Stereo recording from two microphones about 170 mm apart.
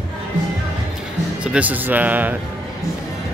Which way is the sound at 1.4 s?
10° right (ahead or behind).